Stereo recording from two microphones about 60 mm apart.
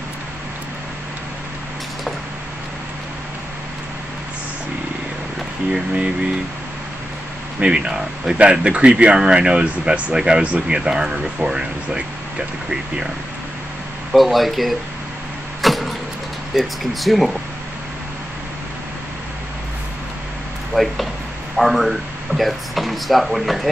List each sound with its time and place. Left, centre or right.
7.6 s speech: centre
14.1 s speech: centre
15.6 s vehicle: centre
16.5 s speech: centre
20.7 s speech: centre